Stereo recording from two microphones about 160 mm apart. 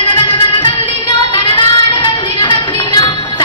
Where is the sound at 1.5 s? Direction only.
30° left (ahead or behind).